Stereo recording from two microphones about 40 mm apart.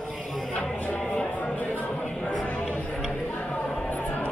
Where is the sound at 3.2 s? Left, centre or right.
Left.